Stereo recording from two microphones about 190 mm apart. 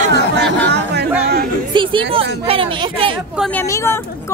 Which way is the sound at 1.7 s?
25° right (ahead or behind).